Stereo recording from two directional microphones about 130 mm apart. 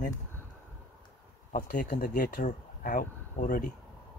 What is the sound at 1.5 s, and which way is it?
Speech, 90° left.